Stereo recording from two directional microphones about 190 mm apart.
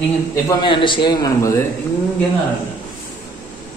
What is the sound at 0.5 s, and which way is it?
A man's voice, 25° left (ahead or behind).